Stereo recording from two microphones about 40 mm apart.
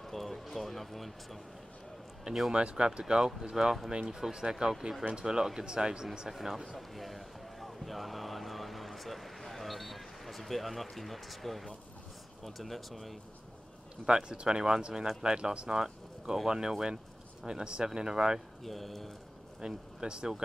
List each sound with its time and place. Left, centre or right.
0.0 s speech: centre
2.3 s speech: right
6.3 s speech: centre
7.0 s a sound: centre
12.4 s speech: centre
14.0 s speech: right
18.6 s speech: centre
19.6 s speech: right